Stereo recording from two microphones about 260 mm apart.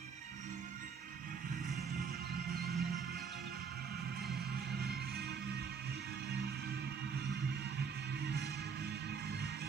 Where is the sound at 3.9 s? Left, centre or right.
Right.